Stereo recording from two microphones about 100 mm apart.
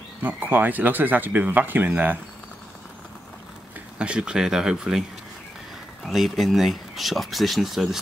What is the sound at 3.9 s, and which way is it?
Speech, 10° right (ahead or behind).